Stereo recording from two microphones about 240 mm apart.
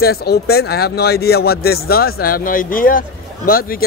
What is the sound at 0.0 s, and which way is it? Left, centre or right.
A man's voice, left.